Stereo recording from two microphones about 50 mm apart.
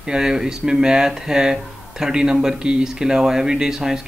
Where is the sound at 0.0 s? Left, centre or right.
Centre.